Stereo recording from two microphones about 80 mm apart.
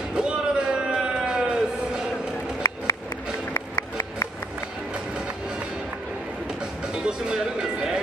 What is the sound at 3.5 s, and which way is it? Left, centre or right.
Music, left.